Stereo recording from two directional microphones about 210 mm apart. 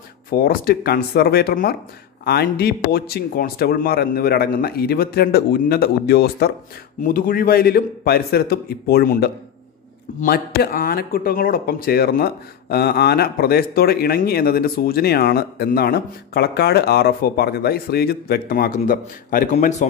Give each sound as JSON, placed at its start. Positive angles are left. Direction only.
{"t": 0.3, "sound": "speech", "side_deg": 45}